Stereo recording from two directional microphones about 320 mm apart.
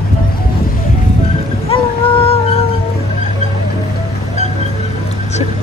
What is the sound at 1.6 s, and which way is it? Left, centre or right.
Vehicle, centre.